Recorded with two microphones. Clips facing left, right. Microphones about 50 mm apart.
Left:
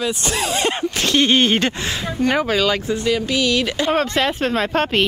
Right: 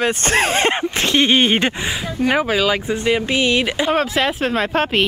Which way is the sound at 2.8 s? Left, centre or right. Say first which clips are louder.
Right 1 dB; right.